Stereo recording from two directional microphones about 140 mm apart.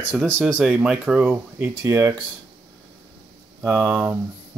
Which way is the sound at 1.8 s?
20° right (ahead or behind).